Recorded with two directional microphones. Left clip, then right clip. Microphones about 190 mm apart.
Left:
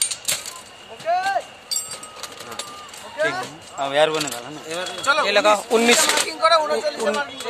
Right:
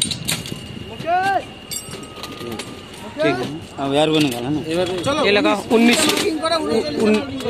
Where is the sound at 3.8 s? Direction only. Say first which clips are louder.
Right 1 dB; 35° left (ahead or behind).